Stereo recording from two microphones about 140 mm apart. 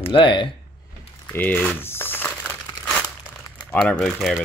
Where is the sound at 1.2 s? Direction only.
10° left (ahead or behind).